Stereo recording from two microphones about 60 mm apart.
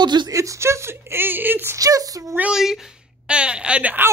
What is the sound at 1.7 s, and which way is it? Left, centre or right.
Speech, right.